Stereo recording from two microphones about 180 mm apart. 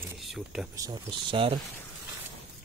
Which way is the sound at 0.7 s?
20° right (ahead or behind).